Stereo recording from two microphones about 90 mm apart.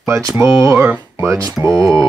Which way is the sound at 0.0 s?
35° right (ahead or behind).